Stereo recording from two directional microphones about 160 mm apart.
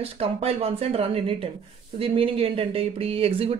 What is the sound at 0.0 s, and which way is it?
Speech, 40° right (ahead or behind).